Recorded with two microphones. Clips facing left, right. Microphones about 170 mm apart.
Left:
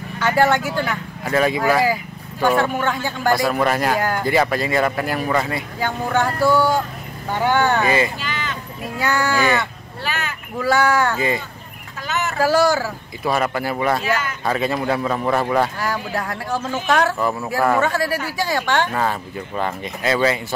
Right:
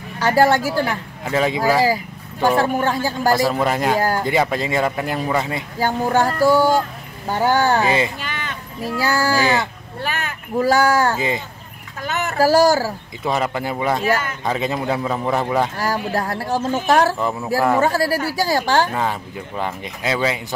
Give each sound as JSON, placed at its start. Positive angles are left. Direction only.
{"t": 0.2, "sound": "speech", "side_deg": -35}
{"t": 1.2, "sound": "speech", "side_deg": -20}
{"t": 2.4, "sound": "speech", "side_deg": -35}
{"t": 3.3, "sound": "speech", "side_deg": -20}
{"t": 5.8, "sound": "speech", "side_deg": -35}
{"t": 8.2, "sound": "a sound", "side_deg": -55}
{"t": 9.0, "sound": "speech", "side_deg": -35}
{"t": 10.0, "sound": "speech", "side_deg": -50}
{"t": 11.1, "sound": "speech", "side_deg": -20}
{"t": 12.0, "sound": "a sound", "side_deg": -50}
{"t": 12.4, "sound": "speech", "side_deg": -40}
{"t": 13.2, "sound": "speech", "side_deg": -20}
{"t": 15.8, "sound": "speech", "side_deg": -35}
{"t": 18.9, "sound": "speech", "side_deg": -15}